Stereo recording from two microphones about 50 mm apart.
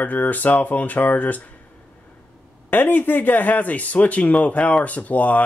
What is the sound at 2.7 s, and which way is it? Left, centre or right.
Speech, left.